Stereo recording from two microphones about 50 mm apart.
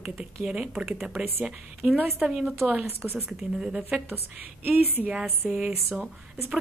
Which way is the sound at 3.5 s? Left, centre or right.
Centre.